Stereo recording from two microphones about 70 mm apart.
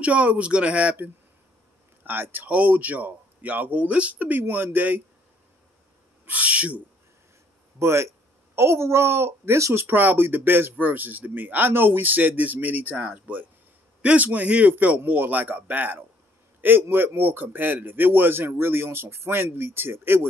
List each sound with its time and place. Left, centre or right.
0.0 s speech: centre
6.2 s speech: centre
7.8 s a man's voice: right
9.8 s a man's voice: right